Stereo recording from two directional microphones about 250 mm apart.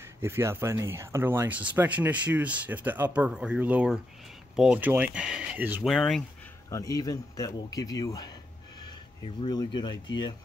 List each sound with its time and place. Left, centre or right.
0.0 s speech: centre
6.7 s speech: centre